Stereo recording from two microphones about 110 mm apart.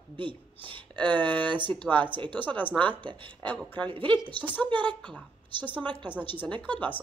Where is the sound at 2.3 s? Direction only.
15° left (ahead or behind).